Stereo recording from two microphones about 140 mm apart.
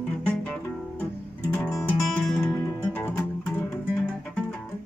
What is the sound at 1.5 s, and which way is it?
Music, 20° left (ahead or behind).